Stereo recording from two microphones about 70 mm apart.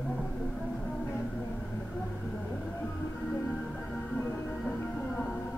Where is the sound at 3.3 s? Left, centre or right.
Centre.